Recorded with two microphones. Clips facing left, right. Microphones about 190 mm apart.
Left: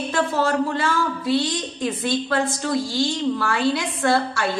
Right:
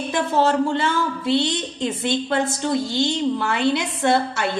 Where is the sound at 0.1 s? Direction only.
25° right (ahead or behind).